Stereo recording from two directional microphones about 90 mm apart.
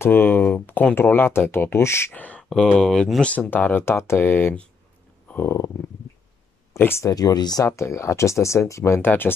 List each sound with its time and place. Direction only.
0.0 s speech: 25° left (ahead or behind)
2.1 s speech: 15° left (ahead or behind)
2.5 s speech: 5° left (ahead or behind); by 7.1 s 30° left (ahead or behind)
7.1 s speech: 45° left (ahead or behind)
7.6 s speech: 35° left (ahead or behind)